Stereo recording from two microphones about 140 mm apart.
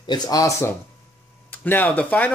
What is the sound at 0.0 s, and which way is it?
Speech, 30° left (ahead or behind).